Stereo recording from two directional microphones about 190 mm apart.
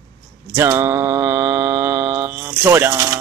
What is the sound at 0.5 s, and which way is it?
Mantra, 10° right (ahead or behind).